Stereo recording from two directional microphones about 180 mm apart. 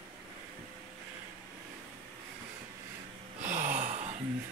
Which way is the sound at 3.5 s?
45° right (ahead or behind).